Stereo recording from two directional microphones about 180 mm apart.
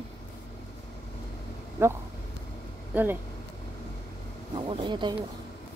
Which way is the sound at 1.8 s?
15° right (ahead or behind).